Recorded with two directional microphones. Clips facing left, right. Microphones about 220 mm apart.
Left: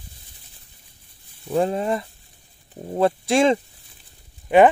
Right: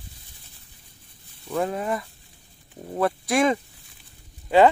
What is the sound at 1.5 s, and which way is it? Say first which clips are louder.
Speech: left 4 dB; 30° left (ahead or behind).